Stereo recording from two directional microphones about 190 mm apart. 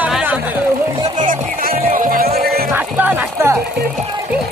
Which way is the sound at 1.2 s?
50° right (ahead or behind).